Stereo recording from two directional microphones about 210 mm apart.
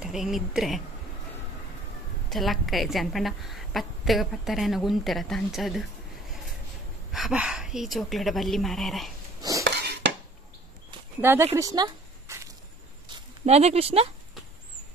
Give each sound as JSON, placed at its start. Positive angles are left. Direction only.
{"t": 0.0, "sound": "a woman's voice", "side_deg": 0}
{"t": 2.2, "sound": "a woman's voice", "side_deg": 0}
{"t": 7.1, "sound": "a woman's voice", "side_deg": 0}
{"t": 9.4, "sound": "dishes", "side_deg": -15}
{"t": 9.7, "sound": "dishes", "side_deg": -55}
{"t": 11.1, "sound": "speech", "side_deg": -10}
{"t": 11.5, "sound": "a sound", "side_deg": -15}
{"t": 13.5, "sound": "speech", "side_deg": -30}